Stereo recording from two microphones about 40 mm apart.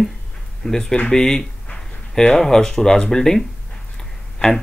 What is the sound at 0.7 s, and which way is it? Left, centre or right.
Speech, centre.